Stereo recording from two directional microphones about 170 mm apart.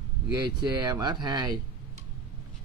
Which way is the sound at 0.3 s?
25° right (ahead or behind).